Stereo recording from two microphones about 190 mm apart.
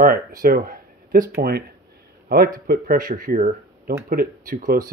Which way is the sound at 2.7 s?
50° right (ahead or behind).